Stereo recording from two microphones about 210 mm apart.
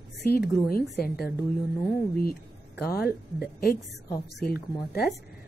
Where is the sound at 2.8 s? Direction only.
45° left (ahead or behind).